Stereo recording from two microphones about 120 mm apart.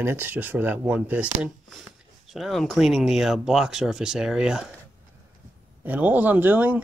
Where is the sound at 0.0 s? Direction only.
20° right (ahead or behind).